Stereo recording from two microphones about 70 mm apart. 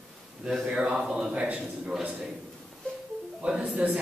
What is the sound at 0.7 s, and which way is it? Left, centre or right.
A man's voice, centre.